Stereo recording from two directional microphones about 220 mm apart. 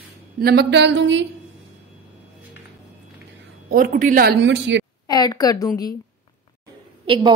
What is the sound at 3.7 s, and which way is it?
A woman's voice, 40° right (ahead or behind).